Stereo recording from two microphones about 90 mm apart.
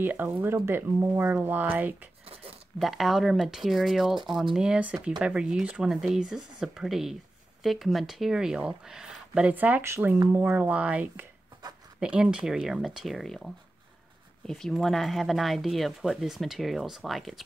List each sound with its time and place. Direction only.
0.0 s speech: 20° right (ahead or behind)
2.8 s speech: centre (ahead or behind)